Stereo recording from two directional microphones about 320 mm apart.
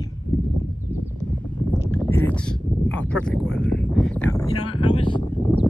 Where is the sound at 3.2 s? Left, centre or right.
Centre.